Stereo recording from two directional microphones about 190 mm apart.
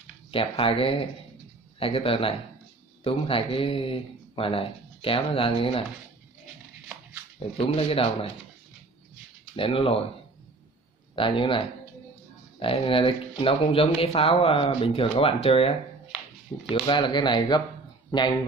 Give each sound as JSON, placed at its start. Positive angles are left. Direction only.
{"t": 0.3, "sound": "speech", "side_deg": 30}
{"t": 7.3, "sound": "speech", "side_deg": 30}
{"t": 9.6, "sound": "speech", "side_deg": 30}
{"t": 11.1, "sound": "speech", "side_deg": 25}
{"t": 16.7, "sound": "speech", "side_deg": 25}